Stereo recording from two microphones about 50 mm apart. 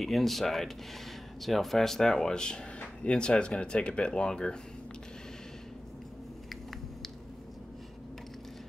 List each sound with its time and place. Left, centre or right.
0.0 s speech: centre